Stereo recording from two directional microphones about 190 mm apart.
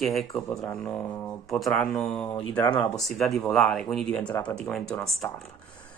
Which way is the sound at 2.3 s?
25° left (ahead or behind).